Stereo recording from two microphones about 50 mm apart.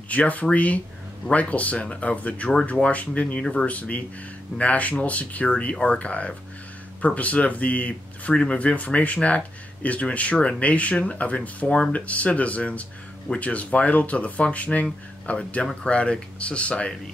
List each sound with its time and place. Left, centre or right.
0.1 s speech: left
11.6 s speech: centre
11.9 s speech: left